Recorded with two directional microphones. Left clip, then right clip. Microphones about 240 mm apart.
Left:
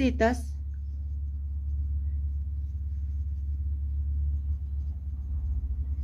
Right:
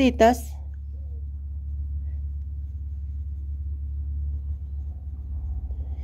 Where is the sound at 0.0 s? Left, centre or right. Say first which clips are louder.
Right 8 dB; right.